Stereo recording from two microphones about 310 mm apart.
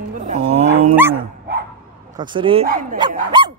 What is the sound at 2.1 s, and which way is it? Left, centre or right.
Speech, centre.